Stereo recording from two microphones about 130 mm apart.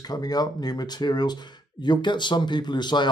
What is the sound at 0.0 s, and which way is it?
Speech, 30° left (ahead or behind).